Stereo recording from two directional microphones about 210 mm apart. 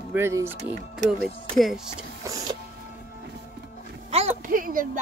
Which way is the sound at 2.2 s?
15° right (ahead or behind).